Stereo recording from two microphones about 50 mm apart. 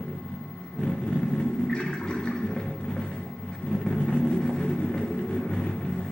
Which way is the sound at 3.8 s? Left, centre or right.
Centre.